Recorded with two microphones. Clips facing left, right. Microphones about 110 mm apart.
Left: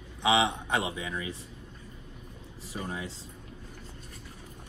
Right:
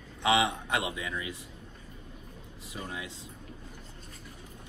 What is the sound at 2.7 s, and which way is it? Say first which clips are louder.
Speech: left 3 dB; 35° left (ahead or behind).